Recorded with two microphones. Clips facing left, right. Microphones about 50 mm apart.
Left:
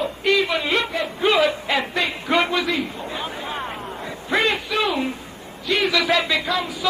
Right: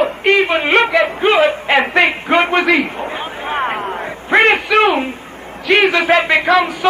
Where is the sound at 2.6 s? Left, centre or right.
Right.